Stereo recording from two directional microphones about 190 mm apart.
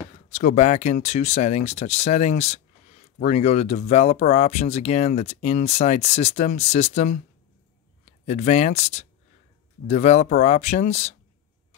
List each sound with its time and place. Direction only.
0.3 s speech: 40° left (ahead or behind)